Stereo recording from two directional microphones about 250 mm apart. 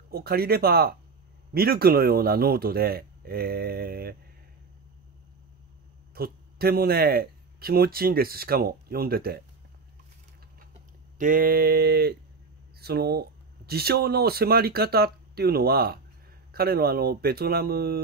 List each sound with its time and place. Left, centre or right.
0.1 s a man's voice: right
6.1 s a man's voice: right
11.1 s a man's voice: right